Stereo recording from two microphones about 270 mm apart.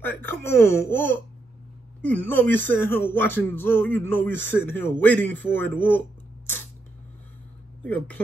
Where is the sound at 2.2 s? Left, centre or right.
Centre.